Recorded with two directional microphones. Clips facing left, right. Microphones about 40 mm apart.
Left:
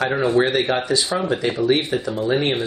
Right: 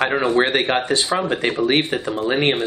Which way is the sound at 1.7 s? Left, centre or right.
Right.